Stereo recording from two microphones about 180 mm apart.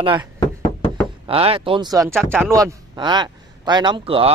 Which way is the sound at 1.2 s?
30° right (ahead or behind).